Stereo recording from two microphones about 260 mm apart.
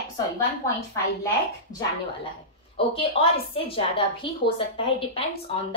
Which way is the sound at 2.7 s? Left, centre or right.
Left.